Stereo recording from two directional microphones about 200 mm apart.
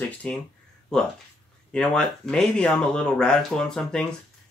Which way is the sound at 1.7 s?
5° left (ahead or behind).